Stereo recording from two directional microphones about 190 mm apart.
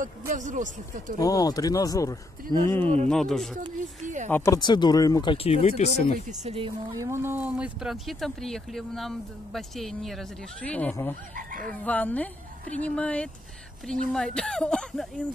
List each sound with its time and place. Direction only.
0.3 s speech: 40° right (ahead or behind)
1.2 s speech: 20° left (ahead or behind)
3.1 s speech: centre (ahead or behind)
4.0 s speech: 40° right (ahead or behind)
4.3 s speech: 15° left (ahead or behind); by 6.1 s 35° left (ahead or behind)
6.4 s speech: 30° right (ahead or behind)
7.0 s speech: 15° right (ahead or behind); by 11.1 s 10° left (ahead or behind)
11.3 s fowl: 45° right (ahead or behind)
11.8 s speech: 10° left (ahead or behind)